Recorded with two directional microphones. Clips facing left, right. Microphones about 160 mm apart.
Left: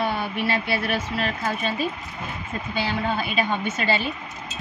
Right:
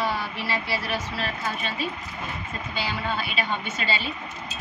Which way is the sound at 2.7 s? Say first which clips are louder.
Left 4 dB; 50° left (ahead or behind).